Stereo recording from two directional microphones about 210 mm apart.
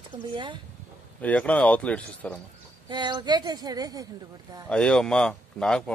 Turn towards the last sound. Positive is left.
turn(degrees=5)  # may be behind; listen again after turning